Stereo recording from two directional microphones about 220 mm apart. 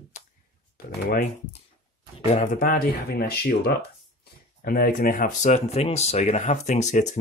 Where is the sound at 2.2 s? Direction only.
35° left (ahead or behind).